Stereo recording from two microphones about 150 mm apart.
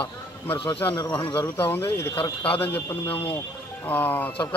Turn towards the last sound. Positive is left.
turn(degrees=10)  # may be behind; listen again after turning